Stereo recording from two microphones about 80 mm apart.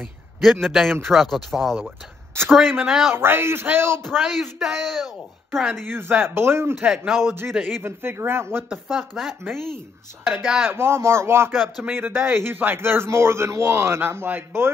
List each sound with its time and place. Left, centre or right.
0.4 s speech: centre
3.1 s a man's voice: right
4.2 s speech: centre
5.9 s a man's voice: right
6.9 s speech: centre
7.2 s a man's voice: right
8.9 s speech: centre
10.4 s speech: centre
10.7 s a man's voice: right
11.5 s speech: centre
11.8 s a man's voice: right